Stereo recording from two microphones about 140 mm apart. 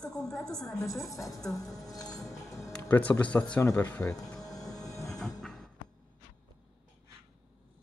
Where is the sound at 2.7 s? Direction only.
10° left (ahead or behind).